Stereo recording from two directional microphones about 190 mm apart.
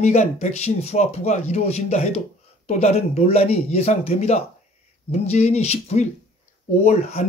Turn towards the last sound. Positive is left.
turn(degrees=35)  # may be behind; listen again after turning